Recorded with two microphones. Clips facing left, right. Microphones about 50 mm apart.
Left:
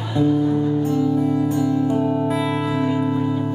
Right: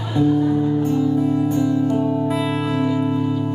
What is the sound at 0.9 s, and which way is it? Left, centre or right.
Music, centre.